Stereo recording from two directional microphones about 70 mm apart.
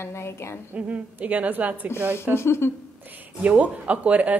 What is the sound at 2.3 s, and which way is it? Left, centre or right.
Speech, left.